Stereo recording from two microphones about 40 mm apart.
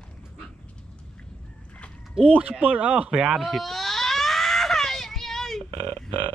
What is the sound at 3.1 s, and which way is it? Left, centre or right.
Speech, centre.